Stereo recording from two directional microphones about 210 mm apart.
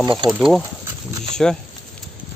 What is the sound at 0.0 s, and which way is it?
Speech, 20° right (ahead or behind).